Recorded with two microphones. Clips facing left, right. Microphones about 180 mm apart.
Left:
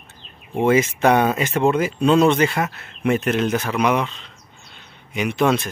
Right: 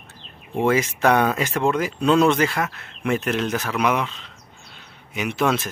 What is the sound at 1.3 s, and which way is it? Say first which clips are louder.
Speech: left 2 dB; 20° left (ahead or behind).